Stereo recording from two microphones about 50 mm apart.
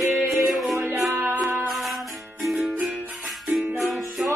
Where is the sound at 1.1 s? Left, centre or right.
Right.